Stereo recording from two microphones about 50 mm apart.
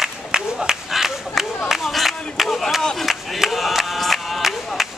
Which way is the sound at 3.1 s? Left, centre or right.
Centre.